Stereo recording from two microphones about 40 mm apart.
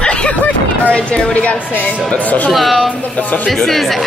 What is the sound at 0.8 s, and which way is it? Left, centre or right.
A woman's voice, left.